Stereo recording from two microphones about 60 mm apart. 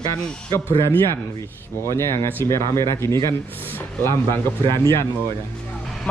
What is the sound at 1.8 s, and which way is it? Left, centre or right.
Speech, left.